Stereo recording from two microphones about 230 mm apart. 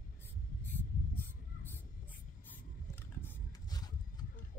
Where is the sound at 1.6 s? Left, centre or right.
Centre.